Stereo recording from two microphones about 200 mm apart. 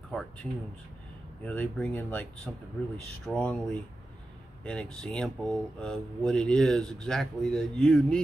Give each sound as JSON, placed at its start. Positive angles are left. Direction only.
{"t": 0.1, "sound": "speech", "side_deg": 5}
{"t": 4.6, "sound": "speech", "side_deg": 5}